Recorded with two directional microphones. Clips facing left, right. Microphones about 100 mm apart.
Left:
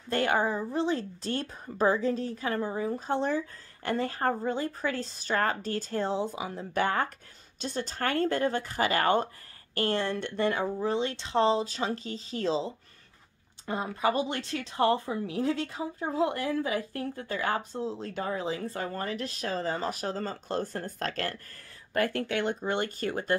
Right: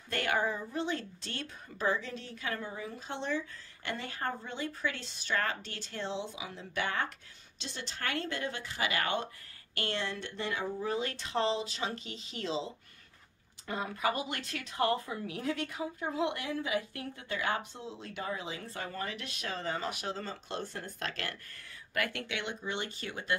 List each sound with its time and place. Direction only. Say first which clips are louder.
0.1 s a woman's voice: left 5 dB; 35° left (ahead or behind); by 10.7 s 50° left (ahead or behind)
10.8 s a woman's voice: left 5 dB; 30° left (ahead or behind); by 23.3 s 45° left (ahead or behind)